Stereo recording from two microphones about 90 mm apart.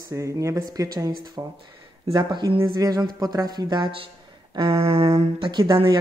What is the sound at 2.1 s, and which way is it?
Speech, 55° right (ahead or behind).